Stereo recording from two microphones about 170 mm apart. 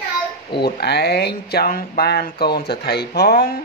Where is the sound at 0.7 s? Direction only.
75° left (ahead or behind).